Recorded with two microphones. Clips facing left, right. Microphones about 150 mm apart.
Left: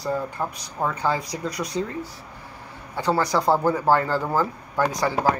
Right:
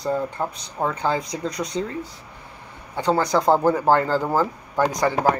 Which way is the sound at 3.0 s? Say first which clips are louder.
Right 2 dB; 20° right (ahead or behind).